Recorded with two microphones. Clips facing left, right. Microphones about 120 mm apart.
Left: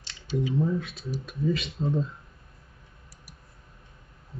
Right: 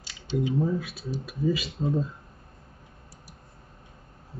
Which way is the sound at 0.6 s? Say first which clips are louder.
Even; 5° right (ahead or behind).